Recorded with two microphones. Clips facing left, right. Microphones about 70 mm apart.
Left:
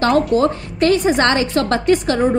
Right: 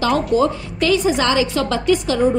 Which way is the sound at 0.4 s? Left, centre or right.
Left.